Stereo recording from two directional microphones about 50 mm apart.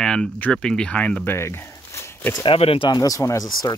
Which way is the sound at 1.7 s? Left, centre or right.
Left.